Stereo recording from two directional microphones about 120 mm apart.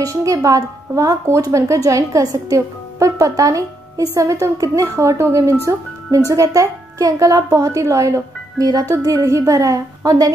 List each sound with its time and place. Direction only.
0.0 s speech: 25° right (ahead or behind)